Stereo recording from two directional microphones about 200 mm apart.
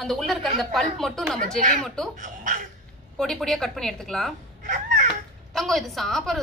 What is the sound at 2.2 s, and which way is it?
Speech, 40° right (ahead or behind).